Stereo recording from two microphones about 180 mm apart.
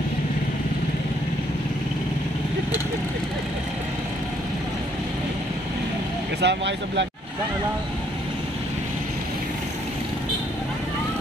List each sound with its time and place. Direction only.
6.4 s speech: 80° right